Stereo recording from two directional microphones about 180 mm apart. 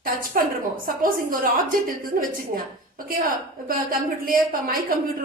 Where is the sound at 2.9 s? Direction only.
55° right (ahead or behind).